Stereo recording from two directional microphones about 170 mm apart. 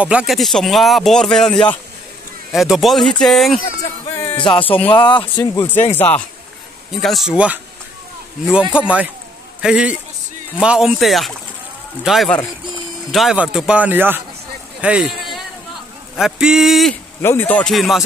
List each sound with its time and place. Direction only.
0.0 s speech: 5° right (ahead or behind)
4.4 s speech: 30° left (ahead or behind)
4.6 s speech: 10° left (ahead or behind)
4.9 s speech: 25° left (ahead or behind)
5.5 s speech: 15° left (ahead or behind)
7.0 s speech: centre (ahead or behind)
8.7 s a man's voice: 5° right (ahead or behind)
14.8 s a sound: 5° right (ahead or behind)
16.2 s speech: 5° right (ahead or behind)
17.2 s speech: 10° left (ahead or behind)